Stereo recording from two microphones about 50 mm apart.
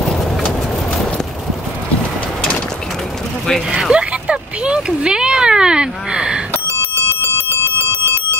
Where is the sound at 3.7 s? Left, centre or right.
Centre.